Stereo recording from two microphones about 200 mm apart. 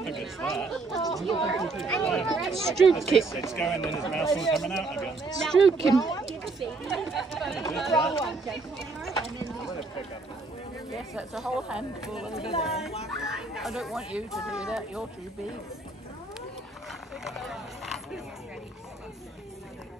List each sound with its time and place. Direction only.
0.0 s speech: centre (ahead or behind)
5.9 s speech: 20° left (ahead or behind)
6.8 s speech: centre (ahead or behind)
11.1 s speech: 5° right (ahead or behind)
12.4 s speech: 30° left (ahead or behind)
12.6 s speech: centre (ahead or behind)
17.3 s a sound: centre (ahead or behind)